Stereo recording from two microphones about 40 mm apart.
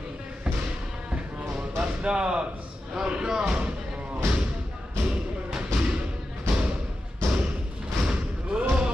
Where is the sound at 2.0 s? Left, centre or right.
Right.